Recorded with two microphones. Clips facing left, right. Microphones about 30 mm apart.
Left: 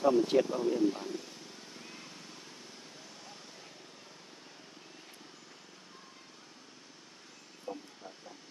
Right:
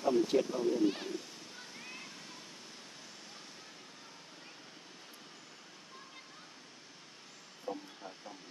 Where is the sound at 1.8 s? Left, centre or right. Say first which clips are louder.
Right 3 dB; centre.